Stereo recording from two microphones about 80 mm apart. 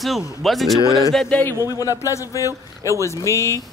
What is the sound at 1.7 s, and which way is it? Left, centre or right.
Speech, left.